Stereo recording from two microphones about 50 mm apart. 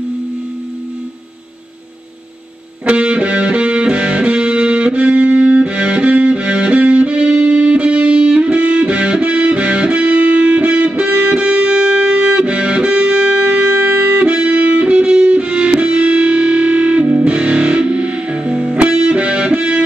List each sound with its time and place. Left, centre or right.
2.8 s music: right